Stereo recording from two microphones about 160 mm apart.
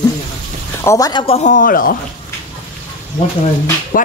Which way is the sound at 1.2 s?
35° left (ahead or behind).